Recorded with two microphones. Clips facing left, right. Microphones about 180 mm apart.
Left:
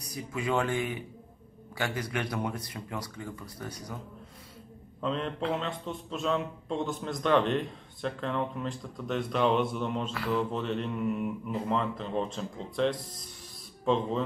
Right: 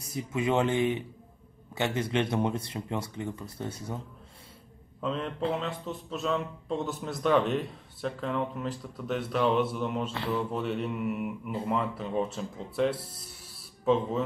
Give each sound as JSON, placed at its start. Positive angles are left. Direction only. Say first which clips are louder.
{"t": 0.0, "sound": "speech", "louder": "right 4 dB", "side_deg": -25}
{"t": 5.0, "sound": "a man's voice", "louder": "even", "side_deg": -5}
{"t": 10.1, "sound": "speech", "louder": "left 1 dB", "side_deg": -25}
{"t": 10.5, "sound": "speech", "louder": "right 1 dB", "side_deg": -10}
{"t": 13.5, "sound": "a sound", "louder": "right 2 dB", "side_deg": -5}